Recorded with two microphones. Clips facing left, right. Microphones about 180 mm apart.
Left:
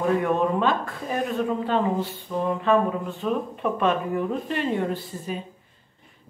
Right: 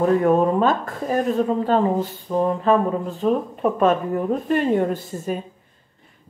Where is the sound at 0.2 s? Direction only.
40° right (ahead or behind).